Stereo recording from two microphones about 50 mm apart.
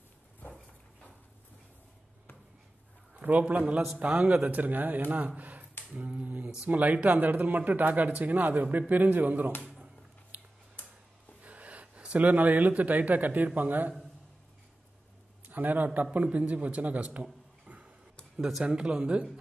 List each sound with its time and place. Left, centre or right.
3.2 s a man's voice: right
5.9 s a sound: right
6.7 s speech: right
10.3 s tick-tock: right
11.4 s speech: right
15.4 s a man's voice: right; by 19.2 s centre